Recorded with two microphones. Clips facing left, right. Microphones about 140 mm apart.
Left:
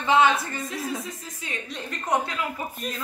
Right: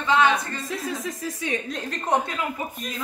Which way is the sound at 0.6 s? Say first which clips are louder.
Right 2 dB; 90° right.